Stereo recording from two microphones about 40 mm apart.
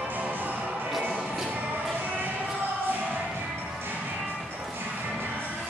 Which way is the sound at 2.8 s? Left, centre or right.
Right.